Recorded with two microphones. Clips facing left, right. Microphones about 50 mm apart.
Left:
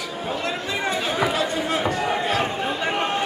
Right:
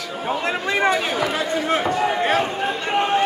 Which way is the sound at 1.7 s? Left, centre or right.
Right.